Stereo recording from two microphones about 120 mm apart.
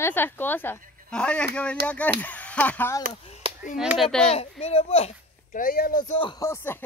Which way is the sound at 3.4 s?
50° right (ahead or behind).